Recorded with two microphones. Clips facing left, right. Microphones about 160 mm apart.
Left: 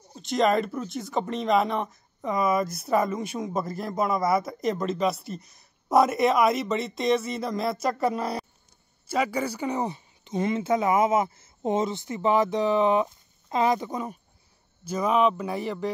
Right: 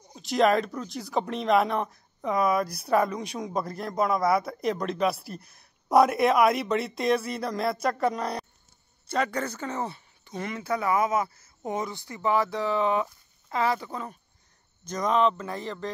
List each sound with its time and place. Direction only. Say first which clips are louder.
0.1 s speech: even; centre (ahead or behind)